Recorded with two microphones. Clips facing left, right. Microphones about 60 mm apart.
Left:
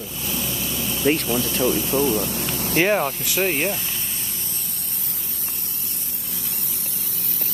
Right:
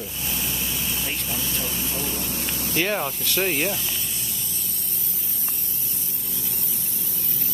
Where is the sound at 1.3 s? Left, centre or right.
Left.